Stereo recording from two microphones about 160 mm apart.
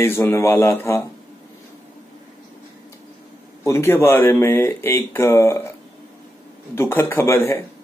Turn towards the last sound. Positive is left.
turn(degrees=15)  # may be behind; listen again after turning